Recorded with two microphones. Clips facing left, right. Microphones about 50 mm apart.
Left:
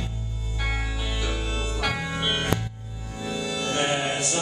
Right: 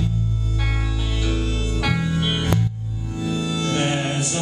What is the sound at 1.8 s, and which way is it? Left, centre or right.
Music, centre.